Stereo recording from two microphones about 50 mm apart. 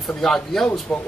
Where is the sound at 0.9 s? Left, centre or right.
Centre.